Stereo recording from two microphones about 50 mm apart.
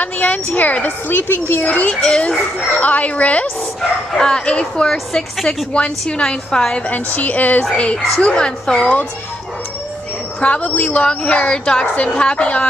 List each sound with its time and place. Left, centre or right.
0.0 s a woman's voice: left
2.0 s a woman's voice: centre
2.8 s a woman's voice: left
4.1 s a woman's voice: centre
6.9 s a woman's voice: left; by 8.8 s centre
10.4 s a woman's voice: left
11.8 s a woman's voice: left
12.1 s a woman's voice: centre